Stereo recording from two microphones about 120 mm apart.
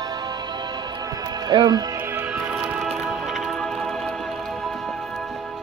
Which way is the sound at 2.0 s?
15° right (ahead or behind).